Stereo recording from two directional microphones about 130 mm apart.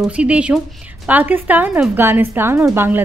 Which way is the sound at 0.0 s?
10° right (ahead or behind).